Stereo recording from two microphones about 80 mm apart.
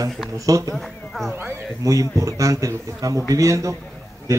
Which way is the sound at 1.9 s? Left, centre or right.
Right.